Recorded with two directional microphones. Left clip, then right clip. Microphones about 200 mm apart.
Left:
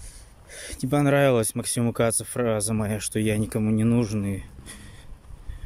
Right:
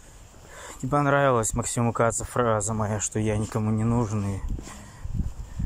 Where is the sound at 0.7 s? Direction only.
30° left (ahead or behind).